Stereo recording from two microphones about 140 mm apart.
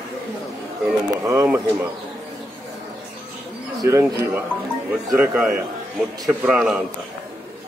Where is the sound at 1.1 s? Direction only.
20° right (ahead or behind).